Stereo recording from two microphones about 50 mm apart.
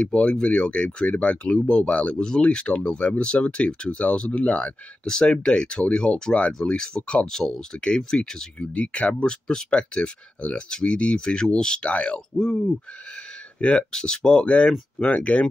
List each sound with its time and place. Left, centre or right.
0.0 s speech: left
2.1 s speech: centre
5.0 s speech: centre